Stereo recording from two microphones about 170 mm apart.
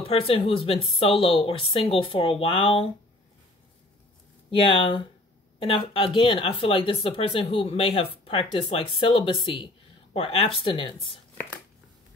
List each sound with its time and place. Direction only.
0.0 s speech: 35° left (ahead or behind)
4.5 s speech: 30° left (ahead or behind)